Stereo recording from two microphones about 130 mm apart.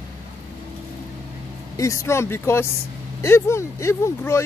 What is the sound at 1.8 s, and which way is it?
Speech, 25° left (ahead or behind).